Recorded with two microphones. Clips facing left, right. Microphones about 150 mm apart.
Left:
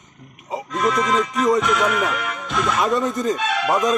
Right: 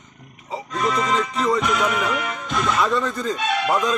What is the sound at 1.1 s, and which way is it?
Speech, 20° left (ahead or behind).